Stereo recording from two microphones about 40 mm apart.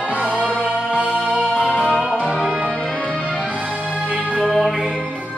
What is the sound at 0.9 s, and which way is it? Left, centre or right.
Music, right.